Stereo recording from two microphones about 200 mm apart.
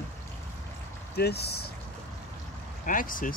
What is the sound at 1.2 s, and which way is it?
Speech, 55° left (ahead or behind).